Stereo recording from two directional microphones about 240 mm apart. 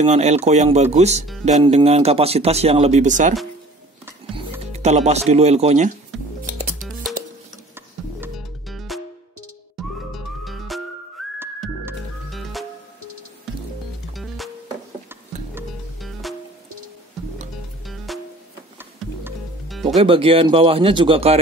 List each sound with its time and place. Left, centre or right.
0.0 s speech: right
4.7 s speech: right
8.2 s music: centre
14.1 s music: centre
15.5 s music: centre
17.8 s music: centre
20.0 s speech: right